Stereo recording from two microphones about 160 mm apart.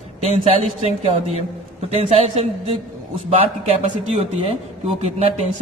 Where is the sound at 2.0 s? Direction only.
40° right (ahead or behind).